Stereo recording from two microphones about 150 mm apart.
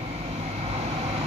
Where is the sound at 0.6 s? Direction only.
45° right (ahead or behind).